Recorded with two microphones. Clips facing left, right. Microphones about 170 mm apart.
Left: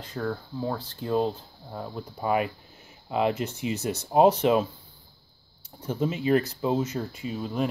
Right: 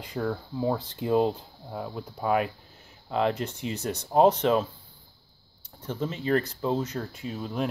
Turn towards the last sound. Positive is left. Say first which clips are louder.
# left 2 dB
turn(degrees=0)  # may be behind; listen again after turning